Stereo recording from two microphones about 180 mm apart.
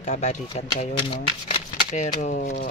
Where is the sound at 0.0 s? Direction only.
40° left (ahead or behind).